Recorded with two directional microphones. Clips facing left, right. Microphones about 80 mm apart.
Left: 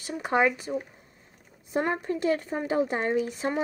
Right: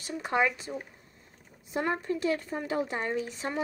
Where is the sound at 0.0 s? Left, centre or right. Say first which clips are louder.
Left 3 dB; left.